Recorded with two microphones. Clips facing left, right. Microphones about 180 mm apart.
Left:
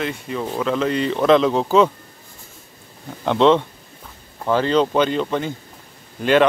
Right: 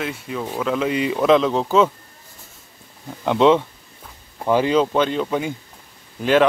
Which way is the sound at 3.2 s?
5° right (ahead or behind).